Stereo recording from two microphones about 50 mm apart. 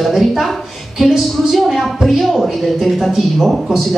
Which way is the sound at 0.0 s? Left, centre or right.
Centre.